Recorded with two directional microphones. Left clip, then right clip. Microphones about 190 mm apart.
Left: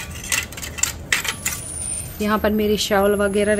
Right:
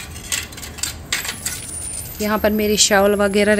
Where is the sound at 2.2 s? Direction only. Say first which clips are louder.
Right 1 dB; 15° right (ahead or behind).